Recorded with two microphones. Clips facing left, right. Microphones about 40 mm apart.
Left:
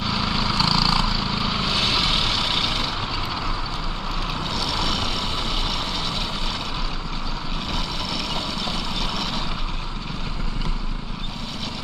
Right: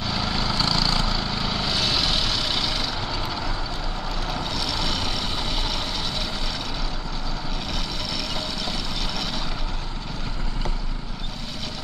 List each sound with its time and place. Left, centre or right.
0.1 s vehicle: left
0.7 s vehicle: left
4.6 s vehicle: left